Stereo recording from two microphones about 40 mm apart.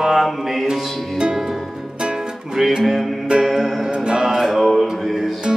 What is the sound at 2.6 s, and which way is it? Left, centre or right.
Music, centre.